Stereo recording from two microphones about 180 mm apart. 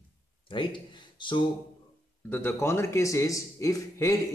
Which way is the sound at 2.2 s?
10° left (ahead or behind).